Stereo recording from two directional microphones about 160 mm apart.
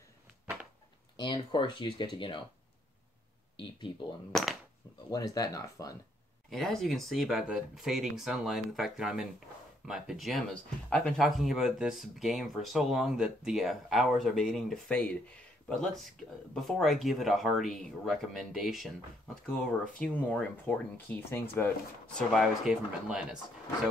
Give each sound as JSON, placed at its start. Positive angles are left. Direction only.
{"t": 1.1, "sound": "speech", "side_deg": 30}
{"t": 3.5, "sound": "speech", "side_deg": 30}
{"t": 4.3, "sound": "speech", "side_deg": 0}
{"t": 5.1, "sound": "speech", "side_deg": 25}
{"t": 6.5, "sound": "speech", "side_deg": 0}
{"t": 20.2, "sound": "speech", "side_deg": 10}
{"t": 22.3, "sound": "speech", "side_deg": 0}